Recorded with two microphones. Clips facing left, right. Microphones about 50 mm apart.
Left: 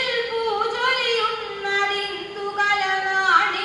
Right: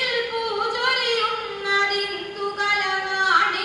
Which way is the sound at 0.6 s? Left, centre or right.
Left.